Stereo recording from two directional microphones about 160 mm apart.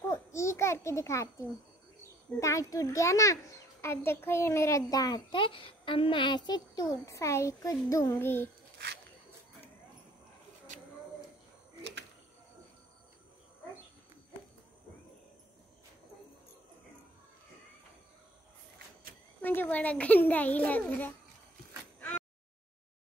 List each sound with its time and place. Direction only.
0.1 s a child's voice: 15° left (ahead or behind)
2.4 s a child's voice: 20° left (ahead or behind)
8.7 s a sound: 90° right
19.4 s a child's voice: 10° left (ahead or behind)